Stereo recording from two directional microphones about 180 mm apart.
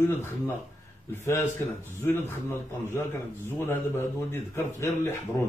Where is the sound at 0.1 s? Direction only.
10° left (ahead or behind).